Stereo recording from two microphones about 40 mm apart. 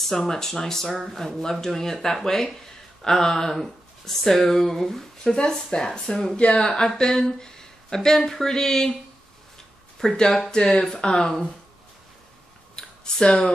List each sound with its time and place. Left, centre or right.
0.0 s speech: centre
5.3 s speech: left
6.3 s speech: left
10.1 s speech: left
12.7 s a sound: centre